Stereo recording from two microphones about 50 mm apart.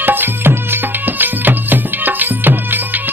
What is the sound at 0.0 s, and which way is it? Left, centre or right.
Music, right.